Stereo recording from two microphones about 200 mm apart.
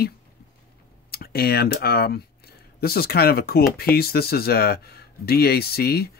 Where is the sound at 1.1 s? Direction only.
50° left (ahead or behind).